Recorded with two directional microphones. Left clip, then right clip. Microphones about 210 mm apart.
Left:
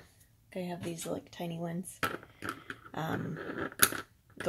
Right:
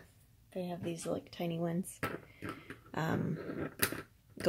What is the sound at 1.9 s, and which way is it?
Speech, 5° left (ahead or behind).